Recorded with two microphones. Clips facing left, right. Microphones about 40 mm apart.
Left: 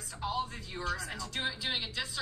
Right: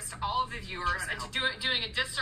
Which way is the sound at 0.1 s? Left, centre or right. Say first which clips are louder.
Right 4 dB; right.